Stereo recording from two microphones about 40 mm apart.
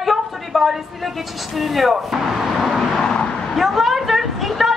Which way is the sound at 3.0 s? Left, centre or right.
Left.